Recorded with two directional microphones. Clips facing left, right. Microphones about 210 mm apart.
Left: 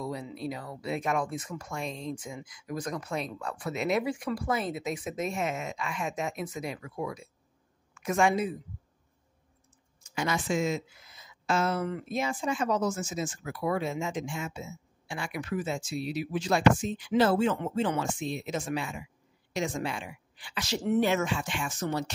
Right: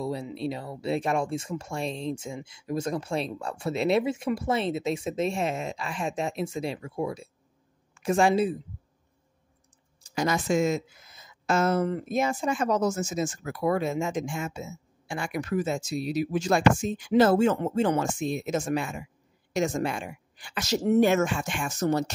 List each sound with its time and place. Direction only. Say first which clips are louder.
0.0 s a woman's voice: right 4 dB; 30° right (ahead or behind)
10.0 s speech: right 4 dB; 40° right (ahead or behind)